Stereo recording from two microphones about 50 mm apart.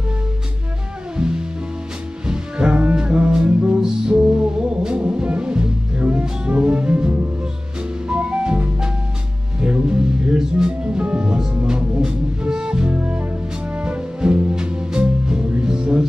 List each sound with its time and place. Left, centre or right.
1.1 s music: centre